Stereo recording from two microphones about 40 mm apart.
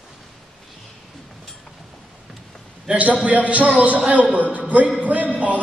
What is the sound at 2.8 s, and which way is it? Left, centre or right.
A man's voice, right.